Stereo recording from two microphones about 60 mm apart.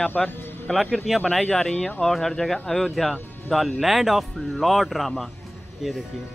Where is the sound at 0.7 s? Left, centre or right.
Centre.